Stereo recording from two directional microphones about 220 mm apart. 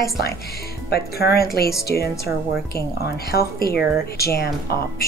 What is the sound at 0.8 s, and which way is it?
Speech, 45° left (ahead or behind).